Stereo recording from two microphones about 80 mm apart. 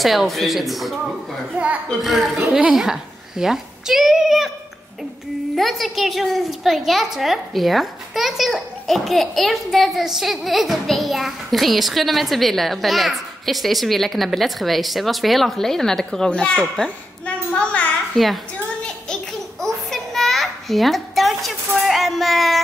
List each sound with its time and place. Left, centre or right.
0.0 s a child's voice: centre
1.6 s a child's voice: centre
1.9 s a child's voice: centre
5.6 s a child's voice: centre
18.1 s a woman's voice: centre
19.6 s a sound: centre